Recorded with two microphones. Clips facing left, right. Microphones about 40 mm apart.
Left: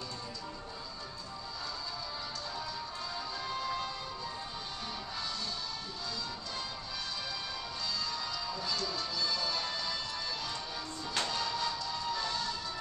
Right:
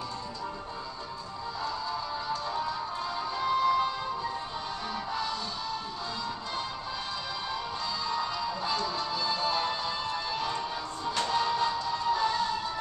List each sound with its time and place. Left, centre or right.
3.3 s music: right
8.1 s music: right